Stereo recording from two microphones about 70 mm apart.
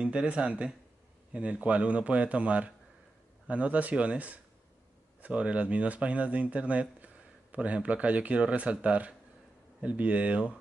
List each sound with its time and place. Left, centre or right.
0.0 s speech: centre